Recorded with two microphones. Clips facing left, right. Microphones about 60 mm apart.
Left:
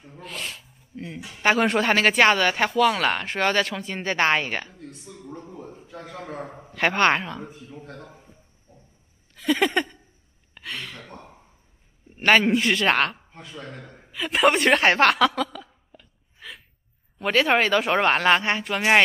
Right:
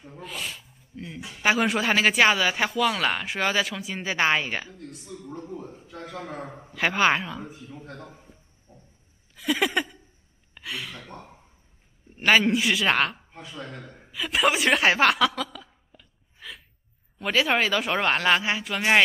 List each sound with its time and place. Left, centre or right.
0.0 s rub: centre
1.4 s a woman's voice: centre
5.1 s a sound: centre
5.5 s a man's voice: centre
9.3 s speech: centre
10.5 s gasp: centre
12.2 s a woman's voice: centre